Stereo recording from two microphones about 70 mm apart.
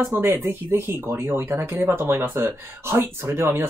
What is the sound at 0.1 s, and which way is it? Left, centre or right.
Speech, right.